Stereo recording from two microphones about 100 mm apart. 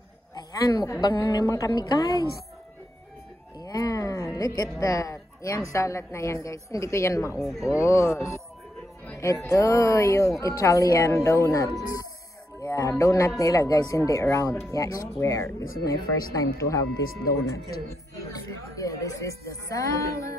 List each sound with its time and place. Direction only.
0.3 s a sound: 40° left (ahead or behind)
1.2 s a woman's voice: 35° left (ahead or behind)
3.5 s a sound: 35° left (ahead or behind)
4.4 s a woman's voice: 40° left (ahead or behind)
7.3 s speech: centre (ahead or behind)
7.6 s speech: 30° left (ahead or behind)
9.4 s a woman's voice: 30° left (ahead or behind)
18.3 s a woman's voice: 35° left (ahead or behind)